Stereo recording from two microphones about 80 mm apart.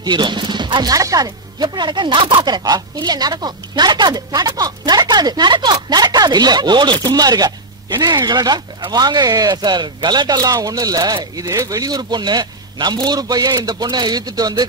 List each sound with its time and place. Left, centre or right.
0.0 s speech: right
0.9 s speech: right